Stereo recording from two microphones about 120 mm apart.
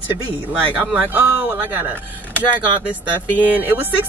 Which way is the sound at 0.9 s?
15° right (ahead or behind).